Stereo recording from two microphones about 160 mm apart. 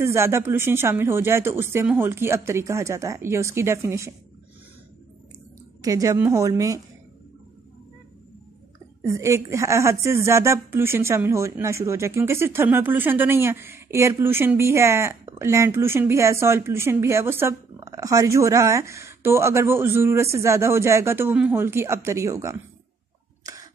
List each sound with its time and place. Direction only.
0.0 s a woman's voice: 15° right (ahead or behind)
5.8 s a woman's voice: 20° right (ahead or behind)
9.0 s a woman's voice: 20° right (ahead or behind)
23.4 s a sound: 20° right (ahead or behind)